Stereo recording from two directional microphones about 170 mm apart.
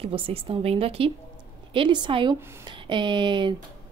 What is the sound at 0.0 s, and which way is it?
A woman's voice, 35° right (ahead or behind).